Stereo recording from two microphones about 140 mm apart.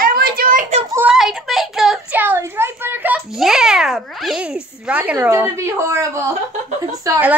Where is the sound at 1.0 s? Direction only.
5° right (ahead or behind); by 6.1 s 20° right (ahead or behind).